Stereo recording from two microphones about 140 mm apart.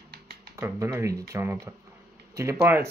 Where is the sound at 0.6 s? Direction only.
20° right (ahead or behind).